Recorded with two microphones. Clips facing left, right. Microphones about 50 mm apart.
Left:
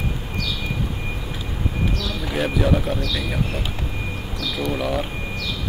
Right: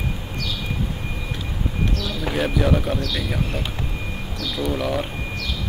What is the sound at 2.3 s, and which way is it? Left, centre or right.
Speech, centre.